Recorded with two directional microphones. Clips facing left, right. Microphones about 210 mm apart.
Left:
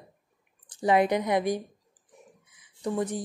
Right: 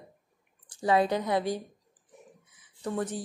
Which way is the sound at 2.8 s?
15° left (ahead or behind).